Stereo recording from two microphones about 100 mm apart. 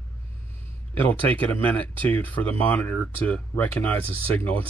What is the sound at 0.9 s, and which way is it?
Speech, 15° left (ahead or behind).